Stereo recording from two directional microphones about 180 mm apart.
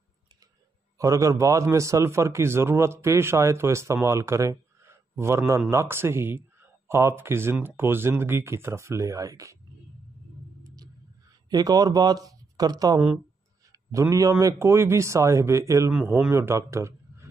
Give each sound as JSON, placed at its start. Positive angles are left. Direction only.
{"t": 0.9, "sound": "a man's voice", "side_deg": -20}
{"t": 11.5, "sound": "speech", "side_deg": -20}
{"t": 13.7, "sound": "a sound", "side_deg": -15}
{"t": 14.4, "sound": "a man's voice", "side_deg": -15}
{"t": 15.9, "sound": "speech", "side_deg": -5}